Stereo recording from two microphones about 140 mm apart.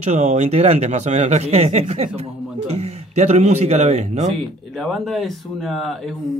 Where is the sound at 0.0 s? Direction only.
55° right (ahead or behind).